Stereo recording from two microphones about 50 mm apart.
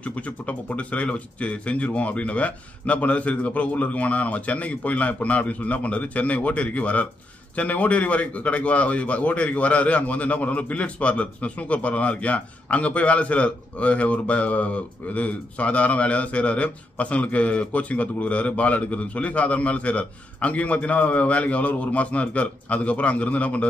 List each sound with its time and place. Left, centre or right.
0.0 s speech: left